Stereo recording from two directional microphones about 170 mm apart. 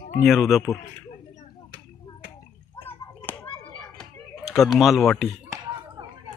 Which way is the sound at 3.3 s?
15° left (ahead or behind).